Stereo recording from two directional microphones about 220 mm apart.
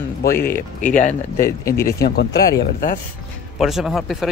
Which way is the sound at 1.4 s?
15° left (ahead or behind).